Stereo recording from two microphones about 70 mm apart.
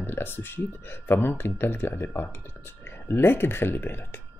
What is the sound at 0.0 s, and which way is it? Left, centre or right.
Speech, left.